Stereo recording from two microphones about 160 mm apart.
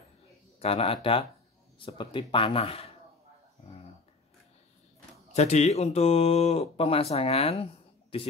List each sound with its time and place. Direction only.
0.6 s speech: 40° left (ahead or behind)
5.3 s speech: 45° left (ahead or behind)